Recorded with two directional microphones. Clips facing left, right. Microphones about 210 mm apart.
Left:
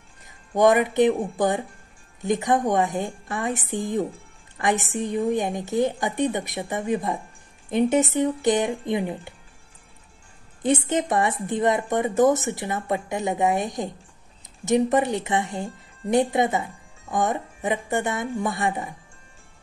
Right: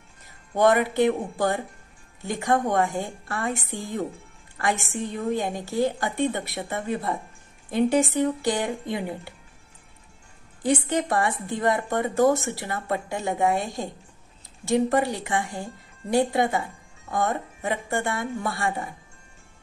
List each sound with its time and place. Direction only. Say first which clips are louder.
0.6 s a woman's voice: left 2 dB; 15° left (ahead or behind)
10.6 s a woman's voice: left 1 dB; 20° left (ahead or behind)